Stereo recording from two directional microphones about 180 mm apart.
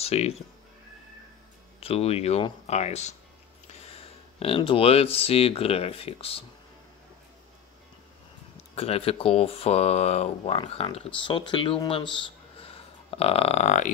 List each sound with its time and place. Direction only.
0.0 s speech: 35° left (ahead or behind)
1.8 s speech: 35° left (ahead or behind)
8.7 s speech: 35° left (ahead or behind)